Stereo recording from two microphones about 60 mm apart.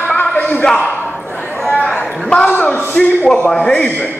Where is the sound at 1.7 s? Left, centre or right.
Left.